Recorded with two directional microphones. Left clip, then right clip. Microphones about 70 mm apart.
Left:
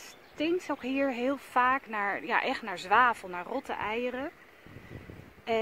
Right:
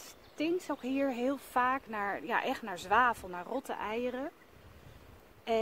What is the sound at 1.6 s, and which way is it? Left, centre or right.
Speech, centre.